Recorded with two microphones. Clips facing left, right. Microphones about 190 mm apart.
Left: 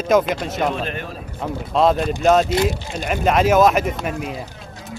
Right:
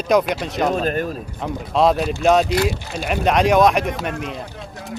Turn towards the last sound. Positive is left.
turn(degrees=0)  # may be behind; listen again after turning